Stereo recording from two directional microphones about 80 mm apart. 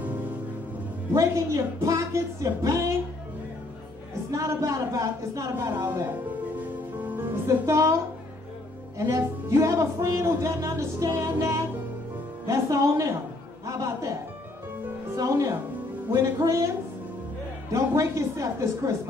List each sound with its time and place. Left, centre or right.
0.0 s music: centre
1.1 s speech: right
4.3 s speech: right
7.0 s music: right
7.4 s speech: right
9.1 s speech: right
15.1 s speech: right
17.7 s speech: right